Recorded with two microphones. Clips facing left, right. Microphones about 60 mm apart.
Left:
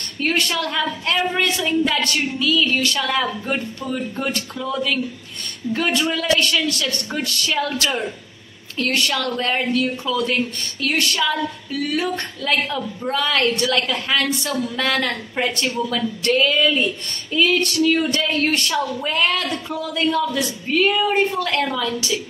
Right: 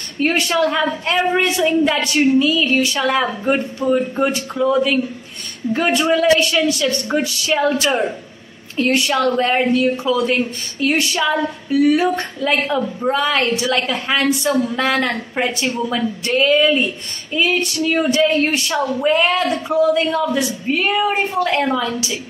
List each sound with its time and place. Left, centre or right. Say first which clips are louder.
0.2 s a woman's voice: right 5 dB; centre